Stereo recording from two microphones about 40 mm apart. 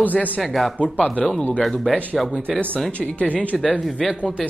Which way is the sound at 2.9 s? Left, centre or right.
Left.